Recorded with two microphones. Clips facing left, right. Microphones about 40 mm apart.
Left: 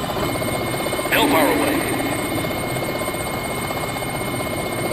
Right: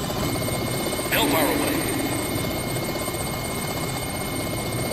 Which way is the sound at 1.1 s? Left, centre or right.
Left.